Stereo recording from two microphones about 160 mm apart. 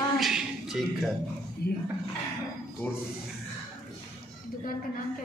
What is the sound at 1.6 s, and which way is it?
Speech, 80° left.